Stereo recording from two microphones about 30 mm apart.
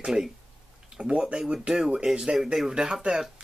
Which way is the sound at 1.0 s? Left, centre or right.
Right.